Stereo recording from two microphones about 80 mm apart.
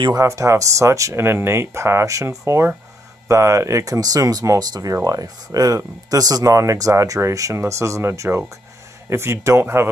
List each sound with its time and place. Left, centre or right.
0.1 s speech: right